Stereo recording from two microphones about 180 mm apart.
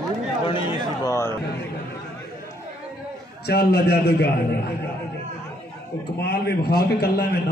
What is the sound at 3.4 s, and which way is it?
A man's voice, 65° left (ahead or behind).